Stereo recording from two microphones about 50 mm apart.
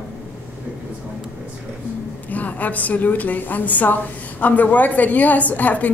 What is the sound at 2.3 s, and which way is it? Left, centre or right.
A woman's voice, left.